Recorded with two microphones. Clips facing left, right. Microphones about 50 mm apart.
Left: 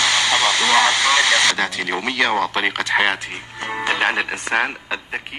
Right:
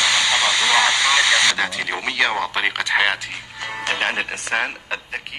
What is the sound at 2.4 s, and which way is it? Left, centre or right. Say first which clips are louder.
Speech: left 1 dB; centre.